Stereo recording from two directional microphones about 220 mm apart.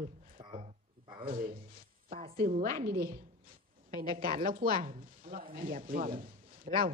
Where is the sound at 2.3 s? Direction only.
40° right (ahead or behind).